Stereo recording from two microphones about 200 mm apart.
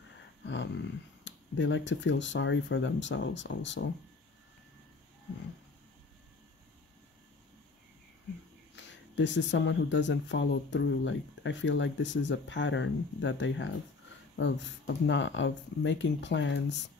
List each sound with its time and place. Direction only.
0.5 s speech: 65° left (ahead or behind)
8.7 s speech: 65° left (ahead or behind)